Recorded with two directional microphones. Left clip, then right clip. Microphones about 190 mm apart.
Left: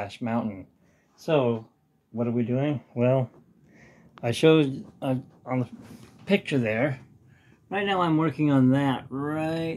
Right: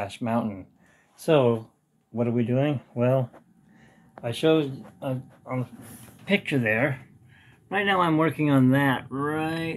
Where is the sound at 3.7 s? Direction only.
45° left (ahead or behind).